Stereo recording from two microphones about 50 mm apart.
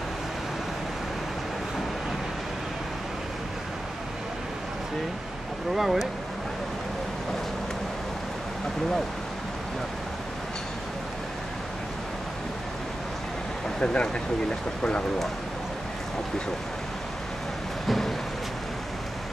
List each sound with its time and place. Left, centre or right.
5.8 s speech: centre
13.7 s speech: centre
17.8 s a sound: centre